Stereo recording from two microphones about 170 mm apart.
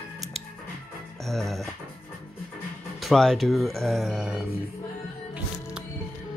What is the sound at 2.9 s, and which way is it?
Speech, centre (ahead or behind).